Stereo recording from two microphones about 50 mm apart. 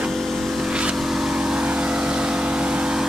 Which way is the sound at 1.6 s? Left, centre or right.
Right.